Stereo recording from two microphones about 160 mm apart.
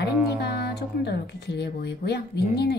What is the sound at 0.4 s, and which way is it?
Speech, 90° left.